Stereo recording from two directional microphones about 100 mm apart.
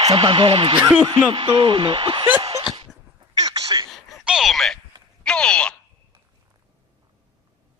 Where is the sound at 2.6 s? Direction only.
70° right (ahead or behind).